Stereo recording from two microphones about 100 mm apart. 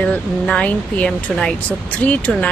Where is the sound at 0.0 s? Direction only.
10° left (ahead or behind).